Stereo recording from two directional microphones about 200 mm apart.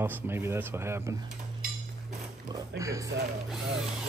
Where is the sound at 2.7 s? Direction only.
15° right (ahead or behind).